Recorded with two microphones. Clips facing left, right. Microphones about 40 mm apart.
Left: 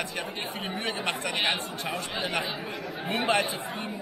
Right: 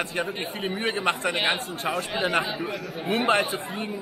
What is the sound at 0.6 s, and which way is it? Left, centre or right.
Speech, centre.